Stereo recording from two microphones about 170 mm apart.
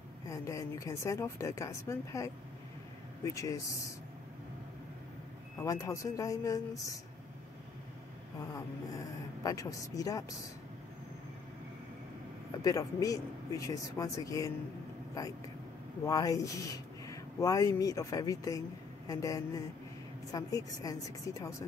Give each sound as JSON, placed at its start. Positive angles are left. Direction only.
{"t": 0.3, "sound": "speech", "side_deg": 20}
{"t": 5.6, "sound": "speech", "side_deg": 20}
{"t": 8.5, "sound": "speech", "side_deg": 20}
{"t": 12.6, "sound": "speech", "side_deg": 20}